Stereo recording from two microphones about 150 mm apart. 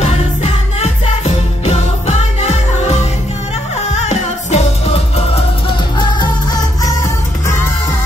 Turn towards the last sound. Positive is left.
turn(degrees=25)  # may be behind; listen again after turning